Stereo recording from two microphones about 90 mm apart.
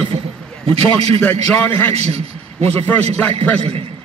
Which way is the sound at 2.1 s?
90° right.